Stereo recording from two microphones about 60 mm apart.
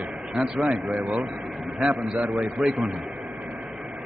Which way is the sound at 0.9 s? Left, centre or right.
Centre.